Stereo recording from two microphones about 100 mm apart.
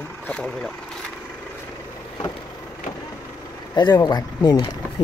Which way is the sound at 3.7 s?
45° left (ahead or behind).